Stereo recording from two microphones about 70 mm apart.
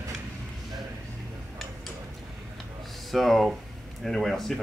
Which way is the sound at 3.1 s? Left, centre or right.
Centre.